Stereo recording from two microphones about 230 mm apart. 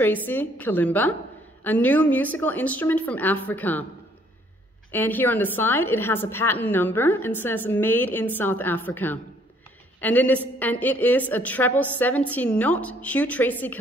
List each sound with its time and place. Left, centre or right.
0.0 s a woman's voice: centre
4.9 s a woman's voice: centre